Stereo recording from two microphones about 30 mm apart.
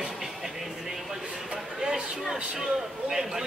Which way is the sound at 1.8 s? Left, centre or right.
Centre.